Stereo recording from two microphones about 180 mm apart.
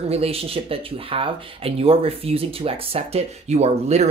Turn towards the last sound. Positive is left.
turn(degrees=-35)  # may be behind; listen again after turning